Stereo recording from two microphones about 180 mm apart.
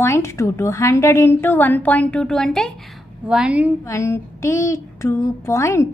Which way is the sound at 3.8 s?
15° left (ahead or behind).